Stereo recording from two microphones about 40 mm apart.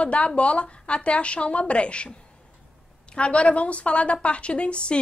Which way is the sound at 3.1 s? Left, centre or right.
Left.